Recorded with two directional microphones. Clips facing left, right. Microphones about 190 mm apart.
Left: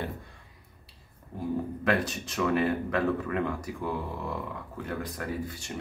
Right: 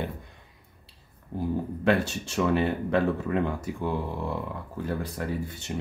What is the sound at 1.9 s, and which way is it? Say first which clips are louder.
Speech: right 4 dB; 30° right (ahead or behind).